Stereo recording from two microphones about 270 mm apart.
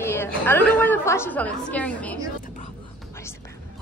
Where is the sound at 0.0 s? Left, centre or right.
Centre.